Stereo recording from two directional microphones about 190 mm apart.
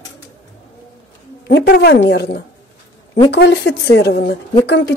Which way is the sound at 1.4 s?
55° left (ahead or behind).